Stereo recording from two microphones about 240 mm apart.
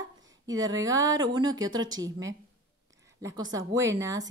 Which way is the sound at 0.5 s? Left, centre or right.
Centre.